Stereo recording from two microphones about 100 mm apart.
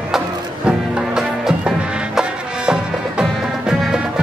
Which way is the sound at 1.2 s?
5° right (ahead or behind).